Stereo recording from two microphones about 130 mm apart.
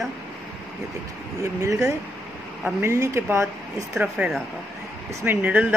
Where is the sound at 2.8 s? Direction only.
20° right (ahead or behind).